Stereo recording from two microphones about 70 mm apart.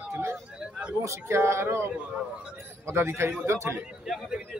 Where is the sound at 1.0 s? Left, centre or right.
Right.